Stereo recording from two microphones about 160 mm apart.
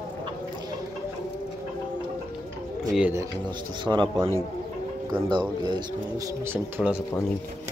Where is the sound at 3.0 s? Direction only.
15° right (ahead or behind).